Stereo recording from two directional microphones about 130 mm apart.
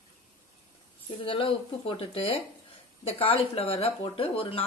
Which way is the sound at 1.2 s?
45° left (ahead or behind).